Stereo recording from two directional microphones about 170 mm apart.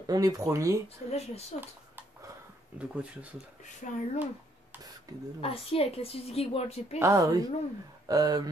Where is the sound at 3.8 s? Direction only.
45° left (ahead or behind).